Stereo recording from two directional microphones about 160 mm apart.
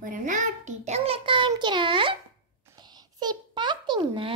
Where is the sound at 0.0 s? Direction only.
55° right (ahead or behind); by 2.1 s 30° right (ahead or behind).